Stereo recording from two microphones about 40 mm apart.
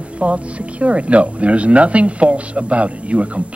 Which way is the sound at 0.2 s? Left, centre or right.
Right.